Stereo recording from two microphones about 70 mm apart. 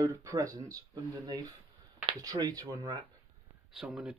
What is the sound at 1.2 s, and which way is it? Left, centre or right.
Speech, right.